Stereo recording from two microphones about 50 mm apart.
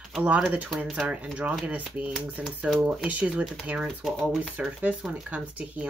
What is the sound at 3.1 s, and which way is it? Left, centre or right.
Speech, right.